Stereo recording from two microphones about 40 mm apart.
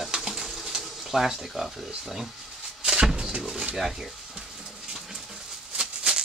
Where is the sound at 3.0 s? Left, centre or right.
Right.